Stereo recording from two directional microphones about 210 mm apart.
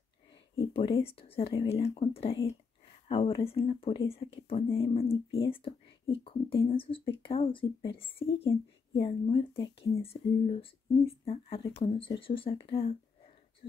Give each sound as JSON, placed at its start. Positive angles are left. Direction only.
{"t": 0.3, "sound": "speech", "side_deg": 25}